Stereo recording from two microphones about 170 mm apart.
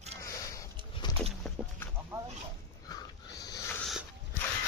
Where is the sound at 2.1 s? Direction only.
15° right (ahead or behind).